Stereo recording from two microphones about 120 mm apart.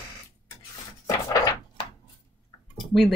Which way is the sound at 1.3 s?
35° left (ahead or behind).